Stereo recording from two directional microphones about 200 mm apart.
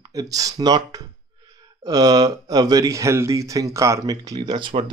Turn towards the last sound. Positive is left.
turn(degrees=-25)  # may be behind; listen again after turning